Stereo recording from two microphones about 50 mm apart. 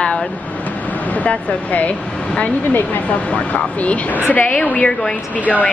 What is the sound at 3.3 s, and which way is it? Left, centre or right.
Speech, left.